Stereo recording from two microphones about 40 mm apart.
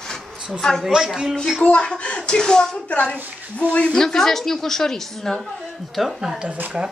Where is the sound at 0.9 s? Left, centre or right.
Centre.